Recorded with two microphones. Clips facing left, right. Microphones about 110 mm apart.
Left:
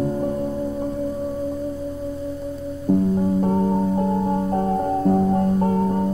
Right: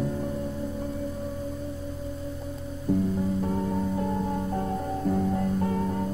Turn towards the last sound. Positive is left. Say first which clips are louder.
# left 7 dB
turn(degrees=40)  # may be behind; listen again after turning